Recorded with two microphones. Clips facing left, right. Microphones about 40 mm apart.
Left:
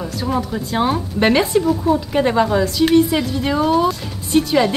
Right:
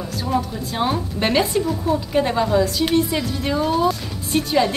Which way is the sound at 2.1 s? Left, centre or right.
Centre.